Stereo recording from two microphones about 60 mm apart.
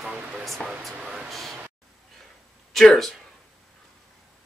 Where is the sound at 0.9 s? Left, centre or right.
Centre.